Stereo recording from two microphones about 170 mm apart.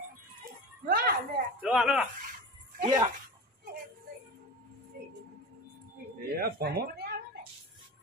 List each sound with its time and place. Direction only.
0.8 s a sound: 55° right (ahead or behind)
1.6 s speech: 5° right (ahead or behind)
2.8 s speech: 25° right (ahead or behind)
6.2 s speech: 65° right (ahead or behind)